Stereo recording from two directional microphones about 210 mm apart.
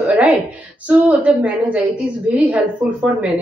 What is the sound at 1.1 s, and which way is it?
A woman's voice, 5° right (ahead or behind).